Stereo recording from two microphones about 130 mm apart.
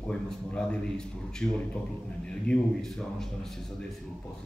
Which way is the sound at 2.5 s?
5° left (ahead or behind).